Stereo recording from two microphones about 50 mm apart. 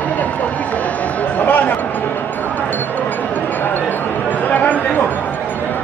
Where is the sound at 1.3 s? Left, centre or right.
Left.